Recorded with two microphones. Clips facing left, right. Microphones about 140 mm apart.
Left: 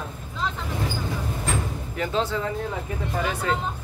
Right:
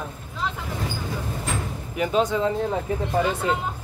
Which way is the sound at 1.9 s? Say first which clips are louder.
Right 4 dB; 15° right (ahead or behind).